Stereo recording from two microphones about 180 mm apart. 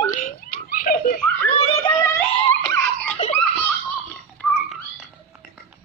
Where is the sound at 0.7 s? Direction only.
50° left (ahead or behind).